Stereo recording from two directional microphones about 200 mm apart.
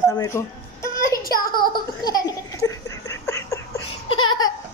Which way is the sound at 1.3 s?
45° left (ahead or behind).